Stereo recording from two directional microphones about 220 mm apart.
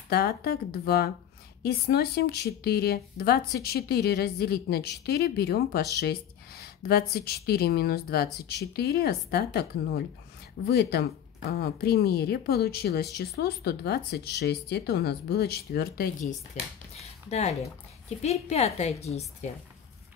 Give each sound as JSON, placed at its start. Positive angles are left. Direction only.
{"t": 0.1, "sound": "speech", "side_deg": 45}
{"t": 17.0, "sound": "a woman's voice", "side_deg": 30}